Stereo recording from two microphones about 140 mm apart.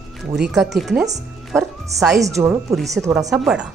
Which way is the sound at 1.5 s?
20° right (ahead or behind).